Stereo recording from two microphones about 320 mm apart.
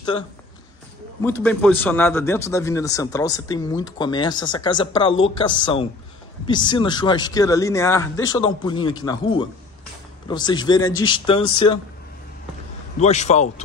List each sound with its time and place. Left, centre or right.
1.2 s a man's voice: centre
13.0 s a man's voice: left